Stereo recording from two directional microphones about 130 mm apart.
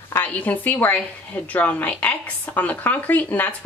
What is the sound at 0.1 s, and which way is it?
A woman's voice, 15° left (ahead or behind).